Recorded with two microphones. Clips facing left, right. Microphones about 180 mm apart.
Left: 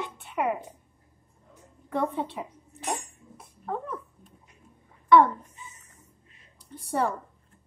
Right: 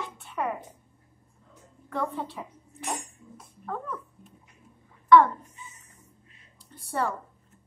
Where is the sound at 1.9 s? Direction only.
20° left (ahead or behind).